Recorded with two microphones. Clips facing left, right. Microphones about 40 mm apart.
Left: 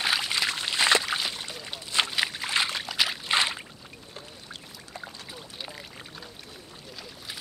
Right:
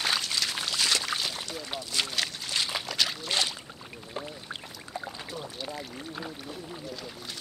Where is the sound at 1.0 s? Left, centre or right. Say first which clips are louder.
Left 2 dB; centre.